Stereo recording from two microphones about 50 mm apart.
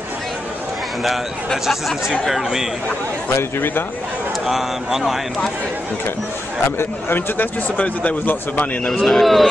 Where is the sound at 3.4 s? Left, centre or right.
Left.